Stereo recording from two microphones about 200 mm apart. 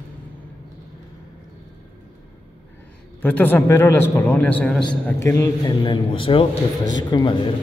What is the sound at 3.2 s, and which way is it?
A man's voice, 10° left (ahead or behind).